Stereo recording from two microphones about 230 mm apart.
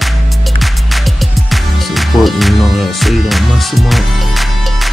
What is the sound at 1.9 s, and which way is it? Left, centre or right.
Music, centre.